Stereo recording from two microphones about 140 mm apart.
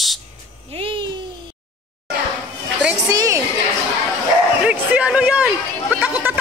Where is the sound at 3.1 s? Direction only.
25° right (ahead or behind).